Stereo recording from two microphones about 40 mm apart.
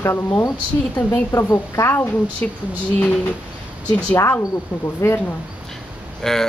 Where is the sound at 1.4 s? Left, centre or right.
Left.